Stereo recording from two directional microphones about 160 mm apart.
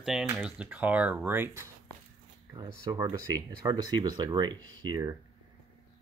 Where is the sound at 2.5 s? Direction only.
25° right (ahead or behind).